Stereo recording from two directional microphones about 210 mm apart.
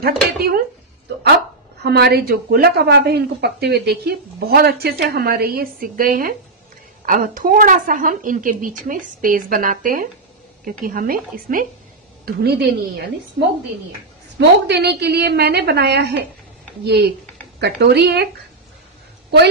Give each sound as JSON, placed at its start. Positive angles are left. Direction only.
{"t": 0.0, "sound": "speech", "side_deg": -45}
{"t": 1.8, "sound": "a woman's voice", "side_deg": -50}
{"t": 14.7, "sound": "speech", "side_deg": -50}